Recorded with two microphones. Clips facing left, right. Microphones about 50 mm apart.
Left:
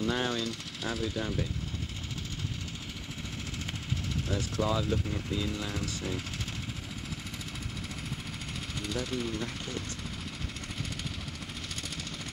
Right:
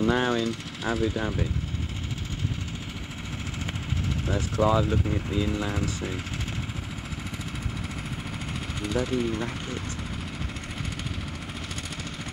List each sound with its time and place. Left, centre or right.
0.0 s speech: centre
3.9 s speech: centre
8.8 s speech: centre